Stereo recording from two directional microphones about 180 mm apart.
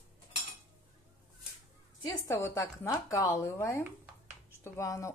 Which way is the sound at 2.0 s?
15° left (ahead or behind).